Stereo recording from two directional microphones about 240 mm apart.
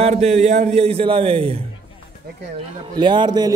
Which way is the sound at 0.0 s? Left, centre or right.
Right.